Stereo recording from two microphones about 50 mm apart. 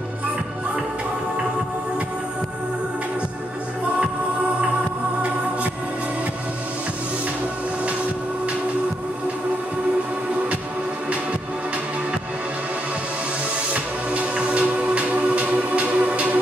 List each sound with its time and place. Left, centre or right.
13.7 s music: right